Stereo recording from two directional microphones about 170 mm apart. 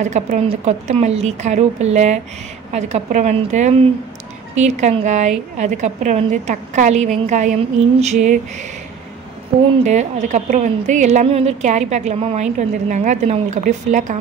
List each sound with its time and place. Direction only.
0.0 s a woman's voice: 45° right (ahead or behind)
9.8 s a woman's voice: 45° right (ahead or behind)